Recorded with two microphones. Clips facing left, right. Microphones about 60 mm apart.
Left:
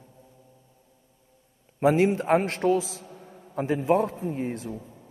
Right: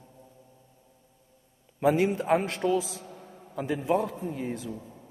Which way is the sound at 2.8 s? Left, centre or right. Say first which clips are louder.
Left 1 dB; right.